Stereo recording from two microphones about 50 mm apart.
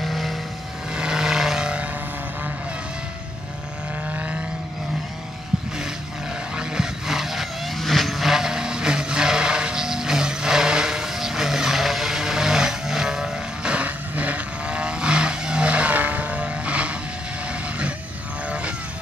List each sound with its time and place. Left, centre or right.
0.0 s vehicle: centre
0.9 s vehicle: centre
4.1 s vehicle: right
6.5 s vehicle: centre
17.5 s train: right